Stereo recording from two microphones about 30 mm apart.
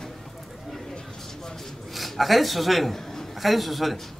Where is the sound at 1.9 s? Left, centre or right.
Centre.